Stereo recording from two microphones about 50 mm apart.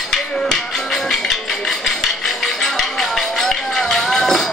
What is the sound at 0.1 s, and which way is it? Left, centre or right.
Music, centre.